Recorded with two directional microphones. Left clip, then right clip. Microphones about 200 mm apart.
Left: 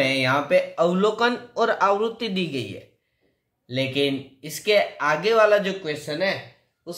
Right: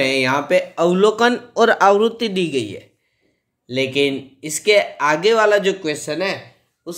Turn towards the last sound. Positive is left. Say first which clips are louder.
# right 3 dB
turn(degrees=-45)  # may be behind; listen again after turning